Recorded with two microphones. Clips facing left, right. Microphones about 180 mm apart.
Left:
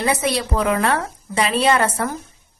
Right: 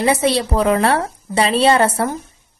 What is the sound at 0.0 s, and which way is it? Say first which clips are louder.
A woman's voice: right 4 dB; 25° right (ahead or behind).